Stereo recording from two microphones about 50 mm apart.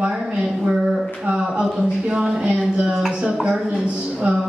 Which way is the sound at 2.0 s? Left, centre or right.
Centre.